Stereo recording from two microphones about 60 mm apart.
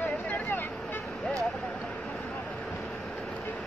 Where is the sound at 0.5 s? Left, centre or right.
Left.